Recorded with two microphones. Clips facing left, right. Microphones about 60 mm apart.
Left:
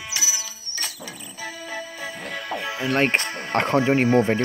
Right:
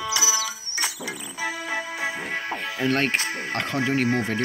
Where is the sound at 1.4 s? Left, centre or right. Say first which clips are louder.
Right 4 dB; right.